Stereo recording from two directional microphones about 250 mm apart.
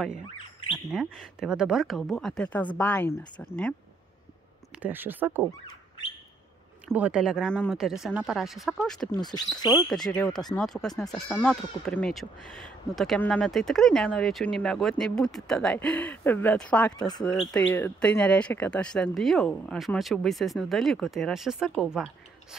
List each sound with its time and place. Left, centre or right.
0.9 s speech: centre
4.7 s speech: centre
6.9 s speech: centre
9.3 s speech: centre
10.0 s speech: centre